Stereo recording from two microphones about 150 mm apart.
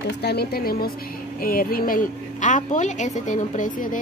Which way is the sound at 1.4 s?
75° left (ahead or behind).